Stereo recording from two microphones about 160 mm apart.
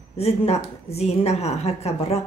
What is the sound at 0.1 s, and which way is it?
A woman's voice, 40° left (ahead or behind).